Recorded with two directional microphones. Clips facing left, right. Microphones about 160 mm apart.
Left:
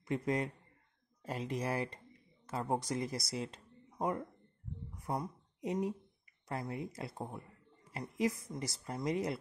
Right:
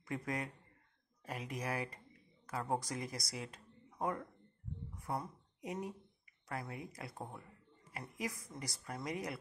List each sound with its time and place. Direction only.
0.0 s a man's voice: 25° left (ahead or behind)